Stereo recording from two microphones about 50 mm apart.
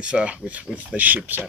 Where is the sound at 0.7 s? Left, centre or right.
Right.